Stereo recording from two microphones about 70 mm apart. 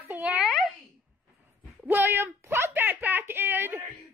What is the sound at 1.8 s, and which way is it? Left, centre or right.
A woman's voice, right.